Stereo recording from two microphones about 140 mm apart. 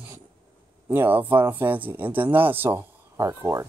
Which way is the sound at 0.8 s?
15° right (ahead or behind).